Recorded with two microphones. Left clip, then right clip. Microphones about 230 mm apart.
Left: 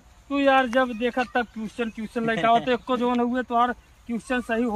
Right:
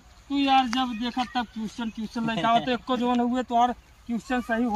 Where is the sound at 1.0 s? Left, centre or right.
Centre.